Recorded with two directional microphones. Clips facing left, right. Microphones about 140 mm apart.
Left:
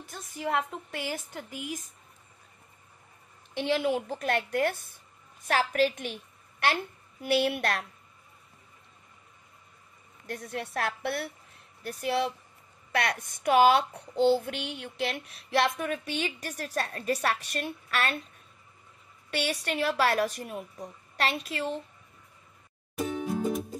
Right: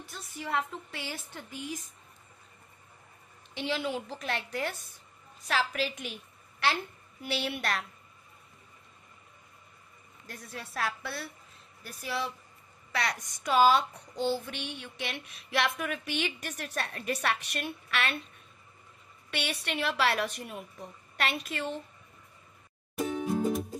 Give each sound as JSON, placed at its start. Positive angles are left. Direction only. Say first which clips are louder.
{"t": 0.0, "sound": "a woman's voice", "louder": "left 6 dB", "side_deg": 45}
{"t": 3.5, "sound": "a woman's voice", "louder": "left 5 dB", "side_deg": 50}
{"t": 10.2, "sound": "a woman's voice", "louder": "left 8 dB", "side_deg": 65}
{"t": 15.6, "sound": "a woman's voice", "louder": "left 3 dB", "side_deg": 30}
{"t": 19.3, "sound": "a woman's voice", "louder": "left 4 dB", "side_deg": 40}